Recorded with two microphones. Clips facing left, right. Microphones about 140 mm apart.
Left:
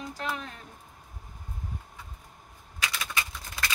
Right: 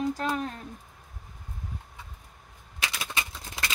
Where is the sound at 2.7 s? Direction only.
25° right (ahead or behind).